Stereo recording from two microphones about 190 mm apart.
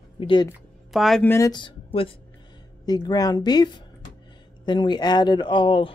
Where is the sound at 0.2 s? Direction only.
25° left (ahead or behind).